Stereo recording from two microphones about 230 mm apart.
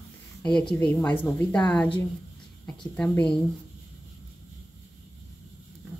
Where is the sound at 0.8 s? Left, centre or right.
Centre.